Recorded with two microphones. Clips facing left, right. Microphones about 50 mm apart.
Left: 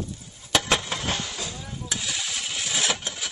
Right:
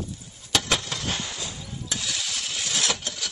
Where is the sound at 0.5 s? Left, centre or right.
Centre.